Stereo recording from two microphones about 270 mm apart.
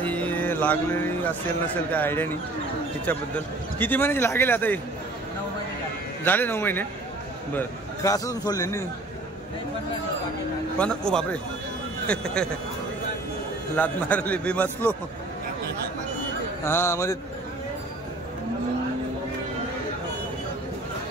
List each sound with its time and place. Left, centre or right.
0.0 s music: centre
1.9 s a man's voice: centre
6.2 s a man's voice: centre
10.8 s a man's voice: centre
12.4 s a man's voice: centre
13.7 s a man's voice: centre
16.6 s a man's voice: centre